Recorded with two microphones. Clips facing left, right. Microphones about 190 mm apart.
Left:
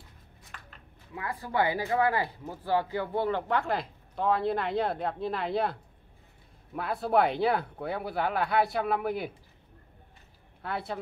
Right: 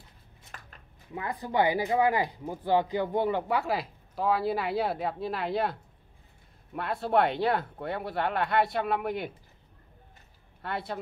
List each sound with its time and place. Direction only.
0.5 s a sound: 40° right (ahead or behind)
1.1 s speech: 20° right (ahead or behind); by 9.3 s 5° left (ahead or behind)
10.6 s speech: centre (ahead or behind)